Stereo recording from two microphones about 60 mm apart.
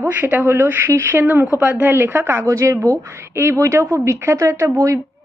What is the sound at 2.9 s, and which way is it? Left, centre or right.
Speech, right.